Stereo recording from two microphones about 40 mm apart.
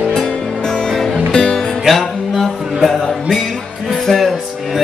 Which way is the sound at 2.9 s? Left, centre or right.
Centre.